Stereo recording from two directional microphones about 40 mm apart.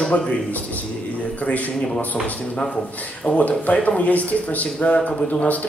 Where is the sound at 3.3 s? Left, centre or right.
Left.